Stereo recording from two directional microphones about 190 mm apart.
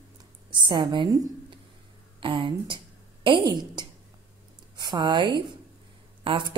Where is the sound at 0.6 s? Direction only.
25° right (ahead or behind).